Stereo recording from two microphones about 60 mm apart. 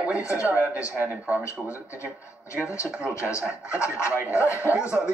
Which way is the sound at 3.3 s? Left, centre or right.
Left.